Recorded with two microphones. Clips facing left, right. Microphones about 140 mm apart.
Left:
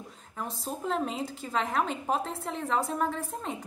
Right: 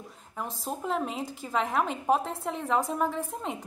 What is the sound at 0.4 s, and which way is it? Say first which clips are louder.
A woman's voice: right 1 dB; 10° right (ahead or behind).